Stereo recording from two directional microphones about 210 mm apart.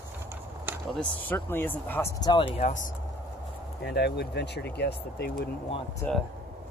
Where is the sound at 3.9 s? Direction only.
50° left (ahead or behind).